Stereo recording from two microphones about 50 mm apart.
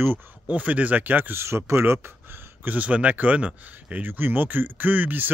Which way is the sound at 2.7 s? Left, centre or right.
Right.